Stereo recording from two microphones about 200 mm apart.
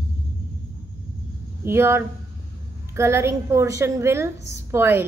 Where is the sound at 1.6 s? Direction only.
10° right (ahead or behind).